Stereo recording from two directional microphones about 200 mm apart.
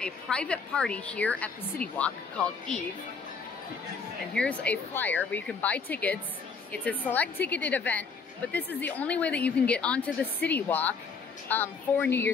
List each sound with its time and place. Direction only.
0.0 s a woman's voice: 5° left (ahead or behind)
4.3 s a woman's voice: 5° left (ahead or behind)